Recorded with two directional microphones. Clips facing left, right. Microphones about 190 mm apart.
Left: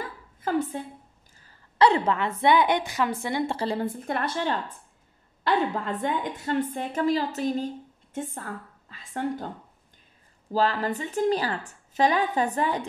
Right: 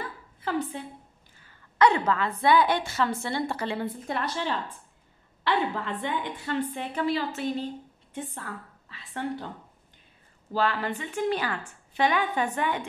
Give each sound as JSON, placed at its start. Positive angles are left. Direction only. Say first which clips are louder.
{"t": 0.0, "sound": "a sound", "louder": "left 2 dB", "side_deg": 45}
{"t": 1.4, "sound": "a woman's voice", "louder": "left 1 dB", "side_deg": 35}
{"t": 3.5, "sound": "a woman's voice", "louder": "left 3 dB", "side_deg": 40}
{"t": 10.5, "sound": "a woman's voice", "louder": "left 3 dB", "side_deg": 40}